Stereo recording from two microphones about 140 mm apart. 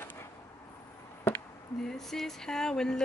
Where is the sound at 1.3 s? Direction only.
15° left (ahead or behind).